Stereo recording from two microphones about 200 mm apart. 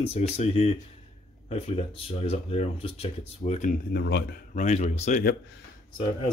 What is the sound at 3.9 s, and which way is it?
Speech, 60° left (ahead or behind).